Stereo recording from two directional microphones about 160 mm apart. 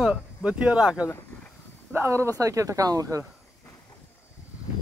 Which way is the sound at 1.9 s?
15° right (ahead or behind).